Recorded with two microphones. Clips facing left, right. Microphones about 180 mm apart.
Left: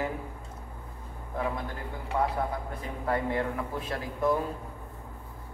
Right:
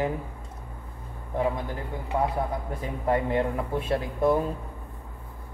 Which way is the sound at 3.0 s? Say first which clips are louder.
Right 4 dB; 25° right (ahead or behind).